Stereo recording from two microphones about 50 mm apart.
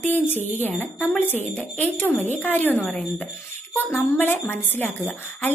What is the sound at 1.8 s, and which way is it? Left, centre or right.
A woman's voice, left.